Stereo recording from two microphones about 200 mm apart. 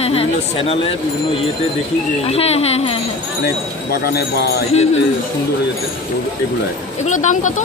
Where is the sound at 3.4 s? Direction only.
50° left (ahead or behind).